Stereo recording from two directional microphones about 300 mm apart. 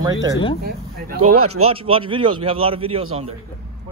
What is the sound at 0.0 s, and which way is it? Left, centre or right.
Speech, centre.